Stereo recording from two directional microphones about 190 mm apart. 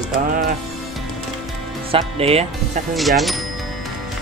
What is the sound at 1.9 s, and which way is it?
Speech, 30° right (ahead or behind).